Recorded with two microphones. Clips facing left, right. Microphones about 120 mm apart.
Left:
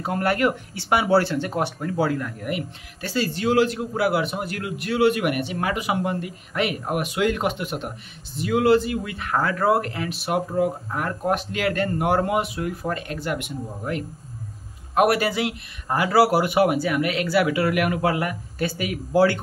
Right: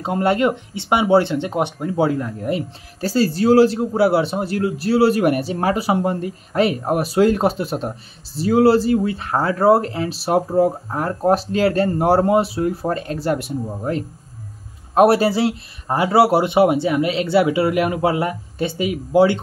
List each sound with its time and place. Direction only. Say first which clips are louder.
0.0 s speech: right 4 dB; 25° right (ahead or behind)